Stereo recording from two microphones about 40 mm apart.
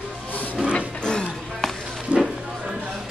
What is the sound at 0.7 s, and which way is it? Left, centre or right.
Music, left.